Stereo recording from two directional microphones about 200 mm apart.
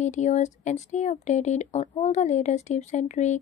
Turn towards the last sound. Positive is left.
turn(degrees=35)  # may be behind; listen again after turning